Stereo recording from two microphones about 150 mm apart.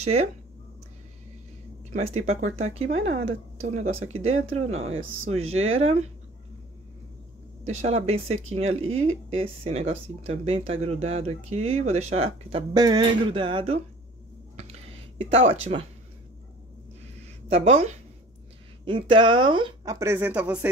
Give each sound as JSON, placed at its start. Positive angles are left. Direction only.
{"t": 0.0, "sound": "speech", "side_deg": -45}
{"t": 2.0, "sound": "speech", "side_deg": -45}
{"t": 7.6, "sound": "speech", "side_deg": -45}
{"t": 12.7, "sound": "speech", "side_deg": -30}
{"t": 15.3, "sound": "speech", "side_deg": -40}
{"t": 17.5, "sound": "speech", "side_deg": -50}
{"t": 18.9, "sound": "speech", "side_deg": -35}